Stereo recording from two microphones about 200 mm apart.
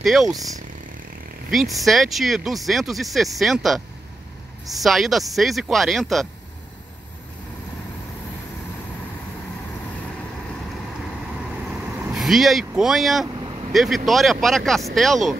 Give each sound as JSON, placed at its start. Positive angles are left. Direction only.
{"t": 0.0, "sound": "speech", "side_deg": 0}
{"t": 1.5, "sound": "speech", "side_deg": 0}
{"t": 4.8, "sound": "speech", "side_deg": 0}
{"t": 12.1, "sound": "speech", "side_deg": 0}
{"t": 13.4, "sound": "vehicle", "side_deg": -20}
{"t": 13.7, "sound": "speech", "side_deg": 0}